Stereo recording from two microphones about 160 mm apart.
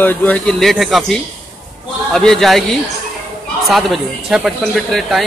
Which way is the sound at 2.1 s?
Centre (ahead or behind).